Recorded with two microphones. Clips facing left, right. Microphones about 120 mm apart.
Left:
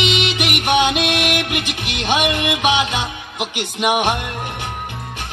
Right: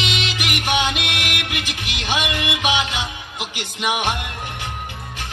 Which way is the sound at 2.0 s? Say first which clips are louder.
Left 5 dB; 20° left (ahead or behind).